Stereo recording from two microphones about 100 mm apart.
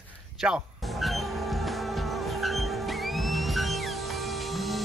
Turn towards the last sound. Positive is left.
turn(degrees=0)  # may be behind; listen again after turning